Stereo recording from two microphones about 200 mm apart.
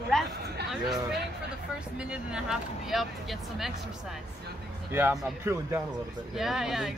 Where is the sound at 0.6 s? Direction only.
Centre (ahead or behind).